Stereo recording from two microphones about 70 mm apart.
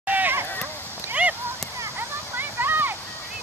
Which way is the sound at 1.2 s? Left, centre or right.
Centre.